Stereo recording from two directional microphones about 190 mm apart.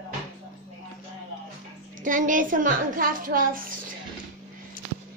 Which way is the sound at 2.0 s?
45° right (ahead or behind).